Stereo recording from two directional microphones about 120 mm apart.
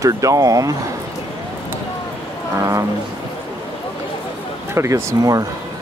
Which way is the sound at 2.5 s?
25° right (ahead or behind).